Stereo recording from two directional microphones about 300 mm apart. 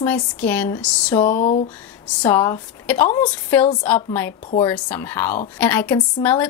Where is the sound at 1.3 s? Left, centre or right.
Left.